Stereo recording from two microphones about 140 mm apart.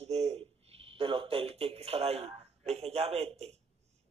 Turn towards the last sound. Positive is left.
turn(degrees=-50)  # may be behind; listen again after turning